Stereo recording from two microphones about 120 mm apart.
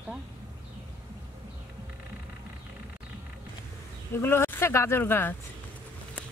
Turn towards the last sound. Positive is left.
turn(degrees=15)  # may be behind; listen again after turning